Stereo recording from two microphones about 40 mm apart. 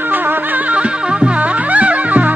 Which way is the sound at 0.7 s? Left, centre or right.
Right.